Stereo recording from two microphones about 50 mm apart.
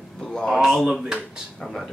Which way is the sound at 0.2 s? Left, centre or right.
Centre.